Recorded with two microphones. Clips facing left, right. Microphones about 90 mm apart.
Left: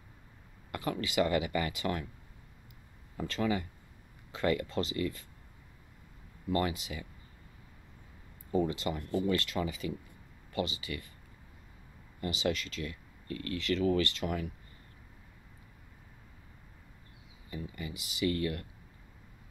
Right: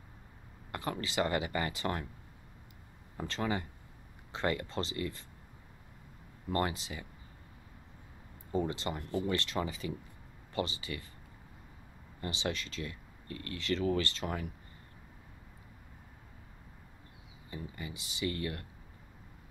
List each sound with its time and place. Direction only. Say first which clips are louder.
0.7 s speech: left 2 dB; 30° right (ahead or behind)
3.2 s speech: left 3 dB; 30° right (ahead or behind)
6.5 s speech: left 2 dB; 30° right (ahead or behind)
8.6 s speech: left 2 dB; 30° right (ahead or behind)
12.2 s speech: left 4 dB; 30° right (ahead or behind)
17.5 s speech: left 2 dB; 25° right (ahead or behind)